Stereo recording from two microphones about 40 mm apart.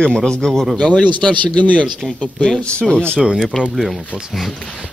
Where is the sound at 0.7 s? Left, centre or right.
Left.